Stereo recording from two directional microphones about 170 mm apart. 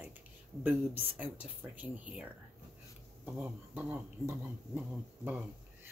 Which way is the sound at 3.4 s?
10° right (ahead or behind).